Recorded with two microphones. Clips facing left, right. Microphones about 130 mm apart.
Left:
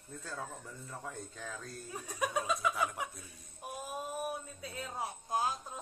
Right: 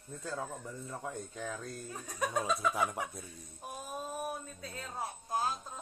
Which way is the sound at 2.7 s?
25° right (ahead or behind).